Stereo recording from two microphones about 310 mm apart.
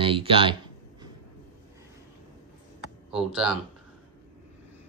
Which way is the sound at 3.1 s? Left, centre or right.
Centre.